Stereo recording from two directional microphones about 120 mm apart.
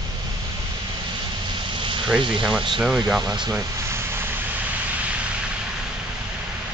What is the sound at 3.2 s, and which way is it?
Speech, 40° right (ahead or behind).